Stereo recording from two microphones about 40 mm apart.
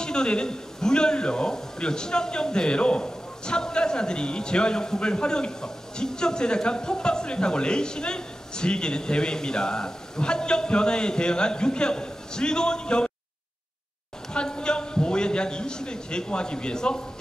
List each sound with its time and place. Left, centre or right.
0.0 s a man's voice: centre
14.3 s a man's voice: left